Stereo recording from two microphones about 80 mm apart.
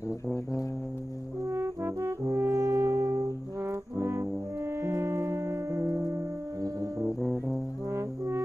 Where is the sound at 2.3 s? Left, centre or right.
Right.